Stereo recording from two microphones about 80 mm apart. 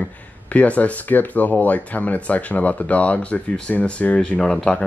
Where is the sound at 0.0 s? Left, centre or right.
Centre.